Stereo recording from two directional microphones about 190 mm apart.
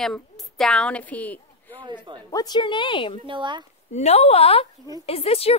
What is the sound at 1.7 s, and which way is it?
Speech, 25° right (ahead or behind).